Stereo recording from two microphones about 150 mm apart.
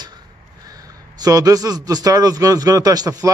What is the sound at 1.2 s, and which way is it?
A man's voice, 25° right (ahead or behind).